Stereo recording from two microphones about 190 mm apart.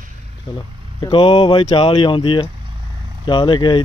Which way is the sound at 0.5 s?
25° left (ahead or behind).